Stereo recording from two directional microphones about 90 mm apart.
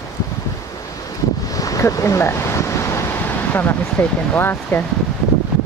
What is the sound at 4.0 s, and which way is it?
Speech, 20° left (ahead or behind).